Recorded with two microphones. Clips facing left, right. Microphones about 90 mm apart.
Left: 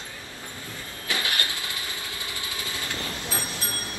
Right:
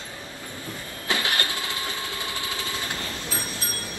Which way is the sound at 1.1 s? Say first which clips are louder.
Right 3 dB; 25° right (ahead or behind).